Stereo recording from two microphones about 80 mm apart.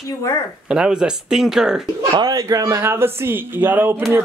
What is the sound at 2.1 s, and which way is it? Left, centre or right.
Speech, right.